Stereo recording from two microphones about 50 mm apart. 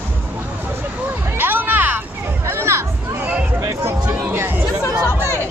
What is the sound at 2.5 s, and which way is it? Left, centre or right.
Music, right.